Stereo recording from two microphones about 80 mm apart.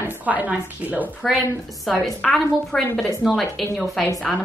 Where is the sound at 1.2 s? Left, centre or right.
Centre.